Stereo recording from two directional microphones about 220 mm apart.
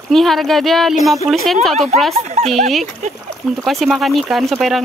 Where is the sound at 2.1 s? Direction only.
30° right (ahead or behind).